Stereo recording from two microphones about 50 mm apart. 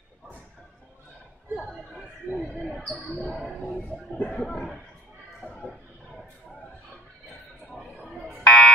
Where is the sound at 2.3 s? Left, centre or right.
Right.